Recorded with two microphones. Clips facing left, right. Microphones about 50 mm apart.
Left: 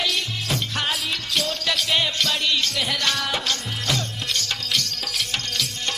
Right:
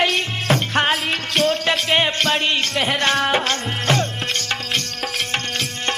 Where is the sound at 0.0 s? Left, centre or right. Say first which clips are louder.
Right 6 dB; right.